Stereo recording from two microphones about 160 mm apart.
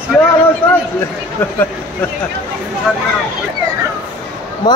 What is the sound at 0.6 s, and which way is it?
Speech, 15° left (ahead or behind).